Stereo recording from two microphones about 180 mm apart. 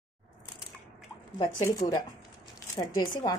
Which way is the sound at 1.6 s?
20° left (ahead or behind).